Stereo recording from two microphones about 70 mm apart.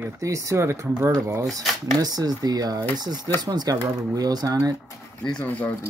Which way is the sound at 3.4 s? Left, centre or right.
Right.